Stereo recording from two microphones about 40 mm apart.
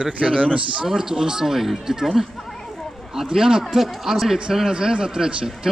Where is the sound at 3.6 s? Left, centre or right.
Centre.